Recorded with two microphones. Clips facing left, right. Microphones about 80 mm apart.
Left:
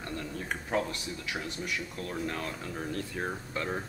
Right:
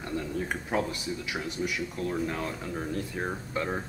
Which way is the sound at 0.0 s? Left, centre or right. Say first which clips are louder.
Right 5 dB; centre.